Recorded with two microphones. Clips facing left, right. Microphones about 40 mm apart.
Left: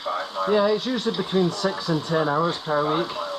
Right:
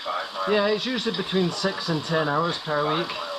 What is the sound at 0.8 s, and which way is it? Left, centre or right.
Speech, right.